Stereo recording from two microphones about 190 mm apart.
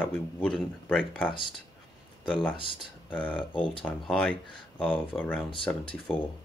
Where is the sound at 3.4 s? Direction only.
25° left (ahead or behind).